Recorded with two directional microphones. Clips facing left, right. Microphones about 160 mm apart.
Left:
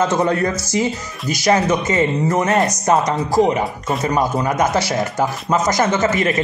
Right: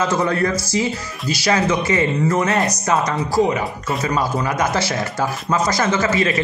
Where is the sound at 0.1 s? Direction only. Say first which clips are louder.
Left 1 dB; 20° left (ahead or behind).